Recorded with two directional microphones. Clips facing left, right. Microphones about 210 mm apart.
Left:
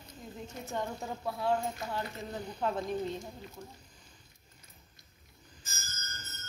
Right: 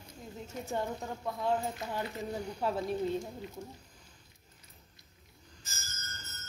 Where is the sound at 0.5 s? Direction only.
10° right (ahead or behind).